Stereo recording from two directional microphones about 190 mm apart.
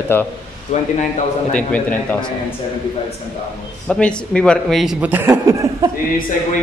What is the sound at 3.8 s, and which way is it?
Speech, 5° left (ahead or behind).